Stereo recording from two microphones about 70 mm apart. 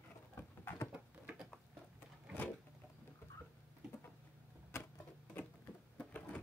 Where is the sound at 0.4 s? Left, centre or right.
Left.